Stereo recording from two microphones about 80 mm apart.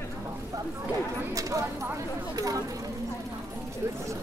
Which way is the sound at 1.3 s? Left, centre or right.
Right.